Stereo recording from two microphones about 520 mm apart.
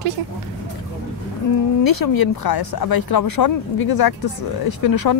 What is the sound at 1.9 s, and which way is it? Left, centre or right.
Speech, left.